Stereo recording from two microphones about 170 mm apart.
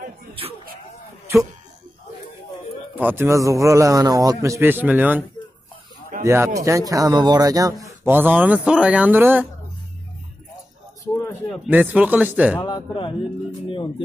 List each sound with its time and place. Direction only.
0.3 s music: 35° right (ahead or behind)
1.2 s a sound: 15° right (ahead or behind)
3.0 s speech: 10° right (ahead or behind)
6.2 s speech: 15° right (ahead or behind)
11.2 s a sound: 10° left (ahead or behind)
11.6 s speech: 10° right (ahead or behind)
12.5 s speech: 25° left (ahead or behind)